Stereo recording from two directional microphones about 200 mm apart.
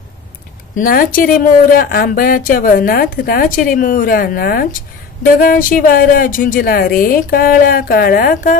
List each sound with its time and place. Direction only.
0.7 s speech: 45° left (ahead or behind)